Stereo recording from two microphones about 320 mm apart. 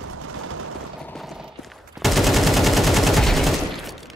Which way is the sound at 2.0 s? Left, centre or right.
Centre.